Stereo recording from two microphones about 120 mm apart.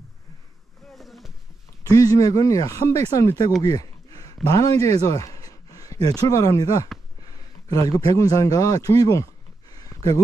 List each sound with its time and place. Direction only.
0.9 s rowboat: centre (ahead or behind)
1.8 s speech: 25° left (ahead or behind)
5.0 s a sound: 30° left (ahead or behind)
6.2 s a man's voice: 25° left (ahead or behind)